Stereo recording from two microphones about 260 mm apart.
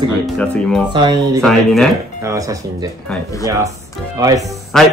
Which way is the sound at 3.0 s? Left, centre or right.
Centre.